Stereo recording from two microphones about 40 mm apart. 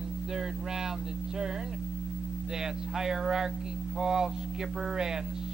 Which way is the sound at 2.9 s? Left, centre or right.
Centre.